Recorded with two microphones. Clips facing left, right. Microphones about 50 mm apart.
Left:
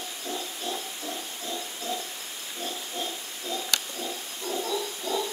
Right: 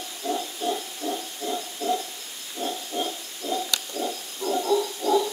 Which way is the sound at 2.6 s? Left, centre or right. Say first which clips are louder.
Right 6 dB; right.